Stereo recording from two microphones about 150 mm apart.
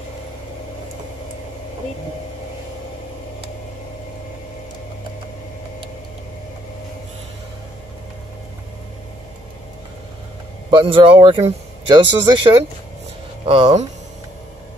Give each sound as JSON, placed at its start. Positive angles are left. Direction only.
{"t": 10.7, "sound": "speech", "side_deg": -35}